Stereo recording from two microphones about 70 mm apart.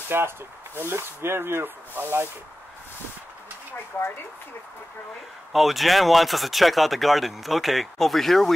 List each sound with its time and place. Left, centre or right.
0.1 s speech: right
5.5 s speech: centre